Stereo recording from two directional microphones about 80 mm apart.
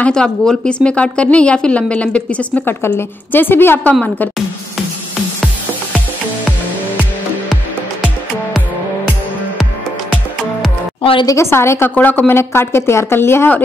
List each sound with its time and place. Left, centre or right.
0.0 s a woman's voice: centre
2.8 s speech: left
11.2 s speech: left
11.9 s speech: left